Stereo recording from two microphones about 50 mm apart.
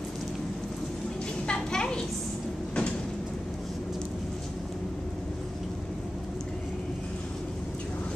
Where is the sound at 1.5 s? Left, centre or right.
Centre.